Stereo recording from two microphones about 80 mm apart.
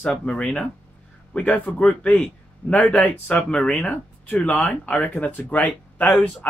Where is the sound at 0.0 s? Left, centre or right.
Centre.